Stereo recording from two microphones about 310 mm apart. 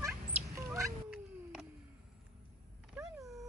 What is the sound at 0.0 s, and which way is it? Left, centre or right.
Cat, centre.